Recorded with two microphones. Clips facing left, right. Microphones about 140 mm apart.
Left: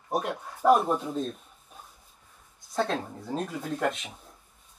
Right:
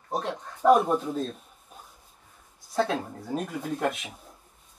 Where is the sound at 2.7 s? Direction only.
5° right (ahead or behind).